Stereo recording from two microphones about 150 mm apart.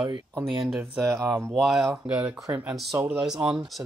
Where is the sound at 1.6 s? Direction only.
Centre (ahead or behind); by 3.2 s 15° right (ahead or behind).